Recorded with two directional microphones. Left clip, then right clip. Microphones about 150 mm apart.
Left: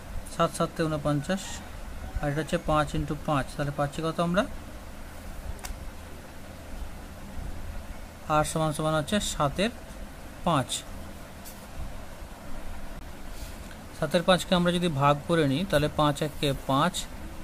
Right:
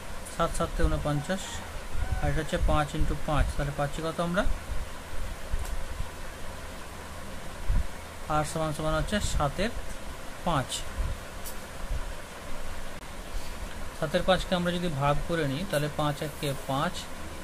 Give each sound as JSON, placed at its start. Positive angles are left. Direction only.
{"t": 0.4, "sound": "speech", "side_deg": 30}
{"t": 8.3, "sound": "speech", "side_deg": 40}
{"t": 13.9, "sound": "speech", "side_deg": 50}